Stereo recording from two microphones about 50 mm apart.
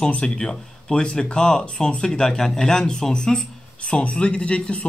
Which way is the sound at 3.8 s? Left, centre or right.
Left.